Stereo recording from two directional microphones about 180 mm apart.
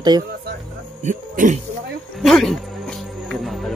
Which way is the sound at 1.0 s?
45° right (ahead or behind).